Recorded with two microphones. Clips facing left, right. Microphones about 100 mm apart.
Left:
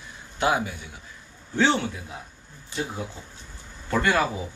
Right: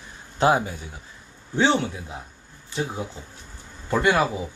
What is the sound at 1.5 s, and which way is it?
Speech, 20° right (ahead or behind).